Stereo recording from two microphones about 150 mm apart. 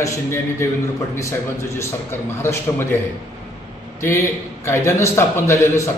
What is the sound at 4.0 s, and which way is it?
A man's voice, 20° left (ahead or behind).